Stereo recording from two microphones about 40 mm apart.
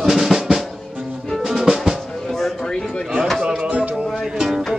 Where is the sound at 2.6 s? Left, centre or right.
Centre.